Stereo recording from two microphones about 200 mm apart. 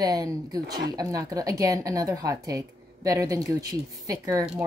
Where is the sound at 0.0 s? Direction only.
20° right (ahead or behind).